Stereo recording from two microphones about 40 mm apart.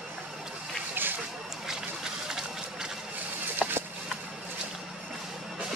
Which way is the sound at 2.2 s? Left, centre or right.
Centre.